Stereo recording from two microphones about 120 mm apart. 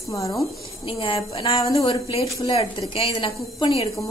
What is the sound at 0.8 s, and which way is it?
A woman's voice, 45° left (ahead or behind).